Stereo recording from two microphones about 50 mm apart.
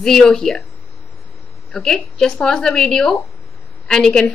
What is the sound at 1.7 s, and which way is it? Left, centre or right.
A woman's voice, centre.